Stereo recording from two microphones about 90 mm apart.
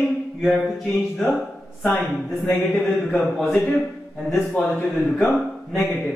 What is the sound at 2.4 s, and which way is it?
Speech, 20° left (ahead or behind).